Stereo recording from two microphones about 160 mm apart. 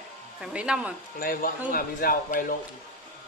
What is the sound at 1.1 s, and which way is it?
A woman's voice, 65° left (ahead or behind).